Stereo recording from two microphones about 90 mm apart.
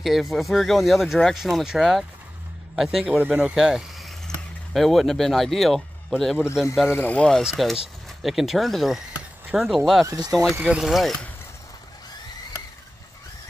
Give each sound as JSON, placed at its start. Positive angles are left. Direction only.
{"t": 0.0, "sound": "speech", "side_deg": 0}
{"t": 3.2, "sound": "speech", "side_deg": -15}
{"t": 3.5, "sound": "speech", "side_deg": -5}
{"t": 6.9, "sound": "speech", "side_deg": 15}
{"t": 7.4, "sound": "speech", "side_deg": 0}
{"t": 10.0, "sound": "speech", "side_deg": -45}
{"t": 10.6, "sound": "speech", "side_deg": -5}